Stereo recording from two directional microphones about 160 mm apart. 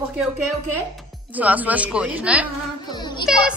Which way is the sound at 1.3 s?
10° right (ahead or behind).